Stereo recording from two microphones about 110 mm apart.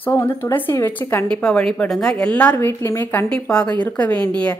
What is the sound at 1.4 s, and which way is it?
Speech, 10° left (ahead or behind).